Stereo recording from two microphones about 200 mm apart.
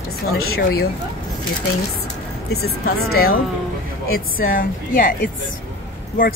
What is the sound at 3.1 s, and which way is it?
Speech, 50° left (ahead or behind).